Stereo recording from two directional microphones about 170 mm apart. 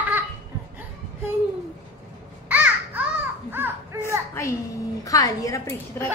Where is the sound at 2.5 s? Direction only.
10° right (ahead or behind).